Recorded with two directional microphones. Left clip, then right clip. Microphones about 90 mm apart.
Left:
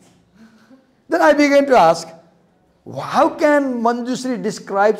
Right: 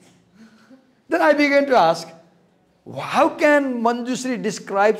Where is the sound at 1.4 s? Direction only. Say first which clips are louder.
Left 4 dB; 30° left (ahead or behind).